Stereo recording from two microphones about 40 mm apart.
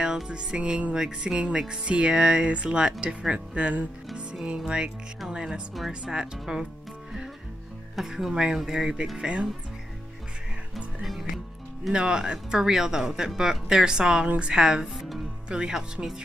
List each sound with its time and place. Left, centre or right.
0.0 s speech: right
0.9 s speech: centre
7.9 s speech: centre
9.2 s speech: right
11.9 s speech: right